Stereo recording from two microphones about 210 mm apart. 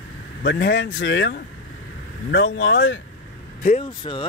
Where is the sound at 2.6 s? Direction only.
60° left (ahead or behind).